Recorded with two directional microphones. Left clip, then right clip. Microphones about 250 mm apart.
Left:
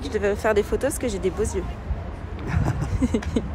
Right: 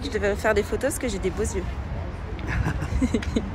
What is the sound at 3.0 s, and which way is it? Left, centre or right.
Vehicle, centre.